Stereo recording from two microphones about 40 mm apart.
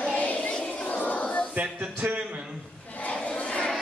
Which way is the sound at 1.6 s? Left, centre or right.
Right.